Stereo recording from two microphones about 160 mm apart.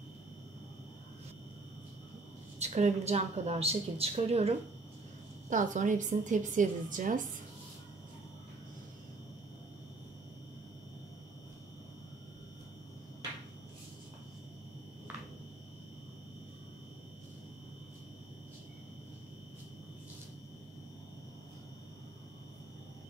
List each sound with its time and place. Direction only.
2.6 s a woman's voice: 45° right (ahead or behind)
5.5 s a woman's voice: 50° right (ahead or behind)